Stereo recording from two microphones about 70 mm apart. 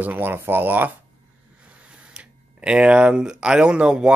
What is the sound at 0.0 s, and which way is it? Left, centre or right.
Speech, right.